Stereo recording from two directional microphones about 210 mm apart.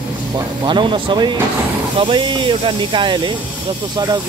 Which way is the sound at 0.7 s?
25° right (ahead or behind).